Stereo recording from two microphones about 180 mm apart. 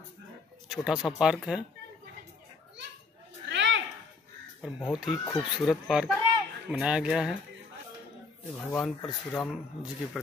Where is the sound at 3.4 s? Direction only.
85° right.